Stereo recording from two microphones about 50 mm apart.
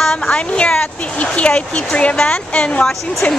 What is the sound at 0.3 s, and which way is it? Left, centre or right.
Speech, left.